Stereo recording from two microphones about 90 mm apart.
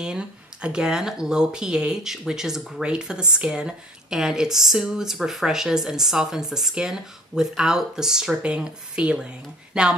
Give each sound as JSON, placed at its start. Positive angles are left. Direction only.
{"t": 0.0, "sound": "speech", "side_deg": -10}